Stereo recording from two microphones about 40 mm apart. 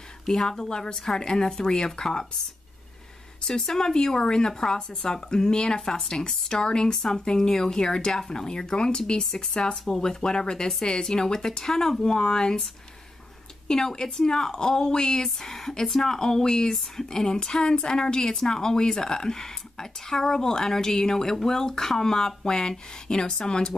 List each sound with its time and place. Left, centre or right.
0.2 s speech: centre
3.4 s speech: centre
13.7 s speech: centre